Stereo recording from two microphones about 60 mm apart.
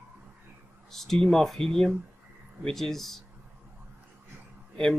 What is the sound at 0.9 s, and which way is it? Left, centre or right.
Speech, centre.